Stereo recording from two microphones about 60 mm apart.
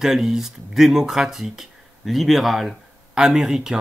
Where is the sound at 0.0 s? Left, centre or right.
Centre.